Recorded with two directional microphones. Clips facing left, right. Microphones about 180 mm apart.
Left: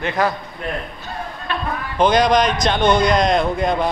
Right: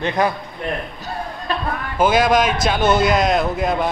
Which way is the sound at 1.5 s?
40° right (ahead or behind).